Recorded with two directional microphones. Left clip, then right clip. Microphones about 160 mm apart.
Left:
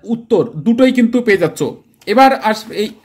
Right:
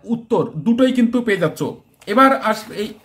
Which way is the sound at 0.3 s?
35° left (ahead or behind).